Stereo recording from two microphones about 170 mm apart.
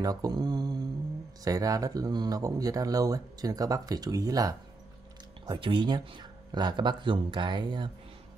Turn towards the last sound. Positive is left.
turn(degrees=-25)  # may be behind; listen again after turning